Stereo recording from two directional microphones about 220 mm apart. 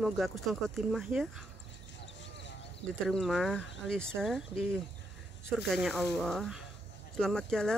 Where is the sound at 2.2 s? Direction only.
55° left (ahead or behind).